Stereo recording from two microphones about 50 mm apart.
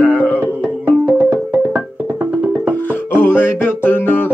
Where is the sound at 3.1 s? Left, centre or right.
Left.